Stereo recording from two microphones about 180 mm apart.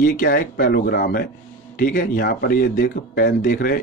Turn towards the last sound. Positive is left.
turn(degrees=55)  # may be behind; listen again after turning